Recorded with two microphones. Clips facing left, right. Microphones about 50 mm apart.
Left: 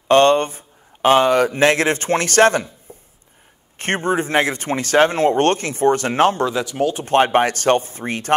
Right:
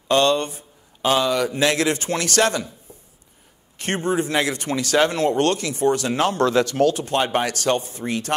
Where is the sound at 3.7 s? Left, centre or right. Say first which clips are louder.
Left 3 dB; left.